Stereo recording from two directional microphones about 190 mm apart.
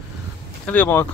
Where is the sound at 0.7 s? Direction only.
10° left (ahead or behind).